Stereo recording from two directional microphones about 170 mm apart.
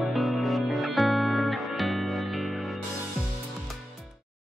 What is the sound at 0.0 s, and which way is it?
Music, centre (ahead or behind).